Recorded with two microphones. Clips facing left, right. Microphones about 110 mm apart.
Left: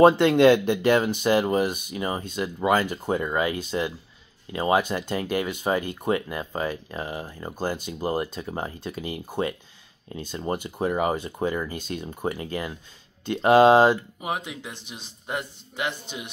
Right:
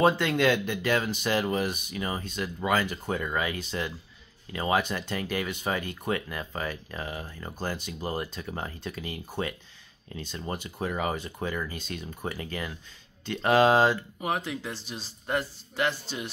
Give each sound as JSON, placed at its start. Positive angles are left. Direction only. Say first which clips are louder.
{"t": 0.0, "sound": "speech", "louder": "left 8 dB", "side_deg": 25}